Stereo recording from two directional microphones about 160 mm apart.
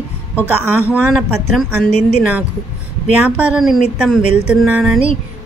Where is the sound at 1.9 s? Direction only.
45° left (ahead or behind).